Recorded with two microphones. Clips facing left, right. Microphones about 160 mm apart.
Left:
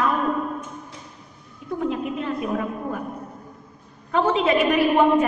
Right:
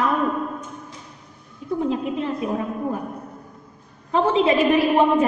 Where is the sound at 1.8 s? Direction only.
30° right (ahead or behind).